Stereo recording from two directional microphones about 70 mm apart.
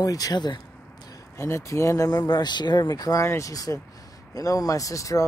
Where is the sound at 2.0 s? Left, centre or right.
Left.